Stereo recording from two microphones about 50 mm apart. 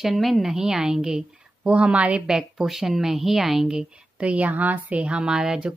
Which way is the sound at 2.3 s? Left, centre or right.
Centre.